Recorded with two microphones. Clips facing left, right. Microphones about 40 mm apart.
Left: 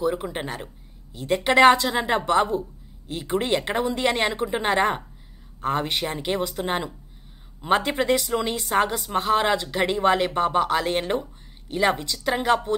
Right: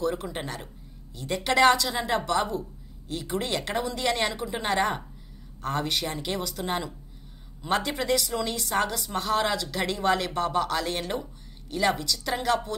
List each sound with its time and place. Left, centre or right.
0.0 s a woman's voice: centre